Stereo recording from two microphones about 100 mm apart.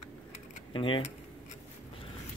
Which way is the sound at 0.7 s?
60° left (ahead or behind).